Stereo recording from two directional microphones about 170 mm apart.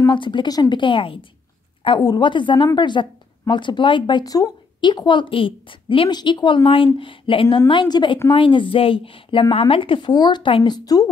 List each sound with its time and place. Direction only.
0.0 s a woman's voice: 30° left (ahead or behind)